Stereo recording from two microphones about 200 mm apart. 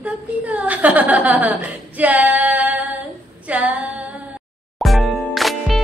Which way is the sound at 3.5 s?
5° right (ahead or behind).